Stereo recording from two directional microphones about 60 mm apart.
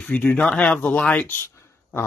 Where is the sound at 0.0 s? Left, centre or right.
Left.